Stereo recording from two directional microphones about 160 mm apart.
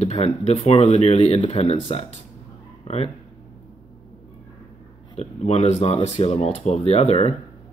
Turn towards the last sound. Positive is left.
turn(degrees=40)  # may be behind; listen again after turning